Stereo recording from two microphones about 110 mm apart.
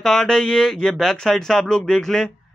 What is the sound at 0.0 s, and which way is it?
A man's voice, 5° left (ahead or behind).